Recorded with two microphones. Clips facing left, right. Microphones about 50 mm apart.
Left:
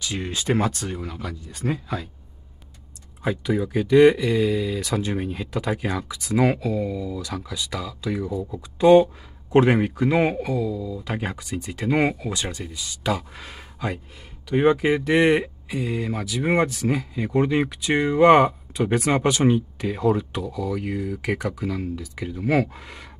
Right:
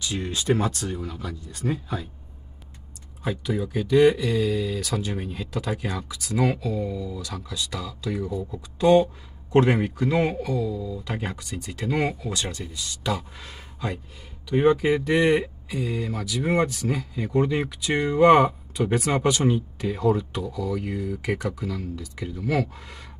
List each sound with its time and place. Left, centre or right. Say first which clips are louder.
0.3 s speech: left 1 dB; centre
3.3 s speech: left 4 dB; centre
12.3 s speech: left 1 dB; centre
15.2 s speech: left 2 dB; left
22.5 s speech: left 4 dB; left